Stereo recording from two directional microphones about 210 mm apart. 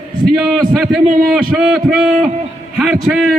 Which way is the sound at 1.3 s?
Centre (ahead or behind).